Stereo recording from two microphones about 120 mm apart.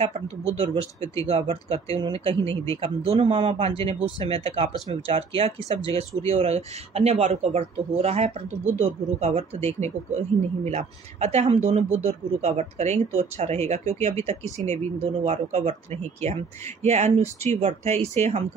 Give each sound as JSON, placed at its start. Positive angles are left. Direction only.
{"t": 0.0, "sound": "speech", "side_deg": -60}
{"t": 6.2, "sound": "speech", "side_deg": -65}